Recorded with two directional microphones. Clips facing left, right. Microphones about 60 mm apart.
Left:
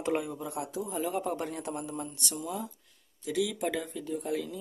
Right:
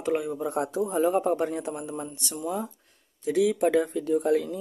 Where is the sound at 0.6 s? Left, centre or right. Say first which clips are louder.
Right 9 dB; right.